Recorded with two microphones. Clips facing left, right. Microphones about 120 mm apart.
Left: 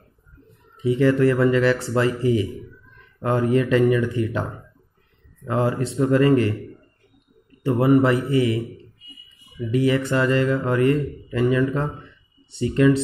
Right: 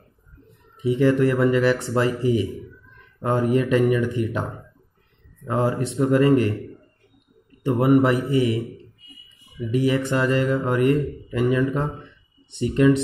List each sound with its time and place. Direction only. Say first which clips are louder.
0.8 s speech: left 1 dB; 15° right (ahead or behind)
7.6 s speech: even; 15° right (ahead or behind)
9.8 s speech: left 1 dB; 15° right (ahead or behind)